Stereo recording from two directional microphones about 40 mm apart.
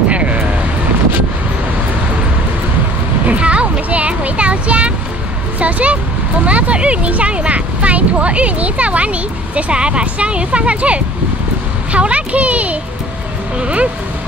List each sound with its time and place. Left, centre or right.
0.1 s vehicle: right
3.3 s a sound: right
6.4 s speech: right